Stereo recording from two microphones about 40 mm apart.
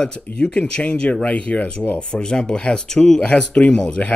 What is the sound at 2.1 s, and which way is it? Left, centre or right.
Speech, centre.